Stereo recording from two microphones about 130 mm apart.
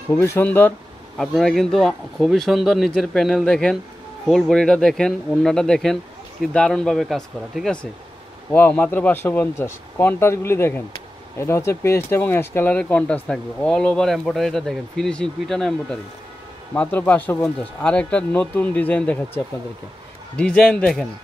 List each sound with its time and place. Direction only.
0.1 s speech: 20° left (ahead or behind)
1.1 s speech: centre (ahead or behind)